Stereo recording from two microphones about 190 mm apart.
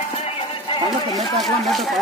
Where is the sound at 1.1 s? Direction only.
Centre (ahead or behind).